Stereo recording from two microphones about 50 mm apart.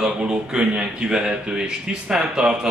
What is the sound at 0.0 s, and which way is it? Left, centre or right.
A man's voice, centre.